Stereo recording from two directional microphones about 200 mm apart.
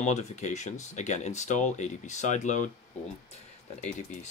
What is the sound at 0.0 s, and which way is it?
Speech, 35° left (ahead or behind).